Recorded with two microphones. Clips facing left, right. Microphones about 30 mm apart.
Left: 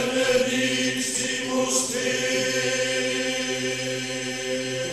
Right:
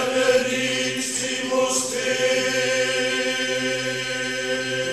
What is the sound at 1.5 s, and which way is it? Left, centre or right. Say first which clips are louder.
Choir: right 4 dB; centre.